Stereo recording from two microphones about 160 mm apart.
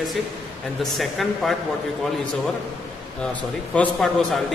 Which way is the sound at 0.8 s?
Centre (ahead or behind).